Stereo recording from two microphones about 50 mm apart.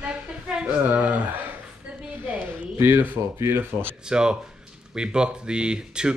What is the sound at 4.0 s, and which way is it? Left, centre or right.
Speech, centre.